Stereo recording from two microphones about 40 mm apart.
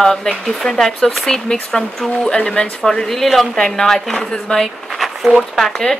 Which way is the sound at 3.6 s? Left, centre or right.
Centre.